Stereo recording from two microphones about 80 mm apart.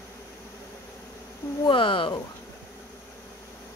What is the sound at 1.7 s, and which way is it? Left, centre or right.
Speech, left.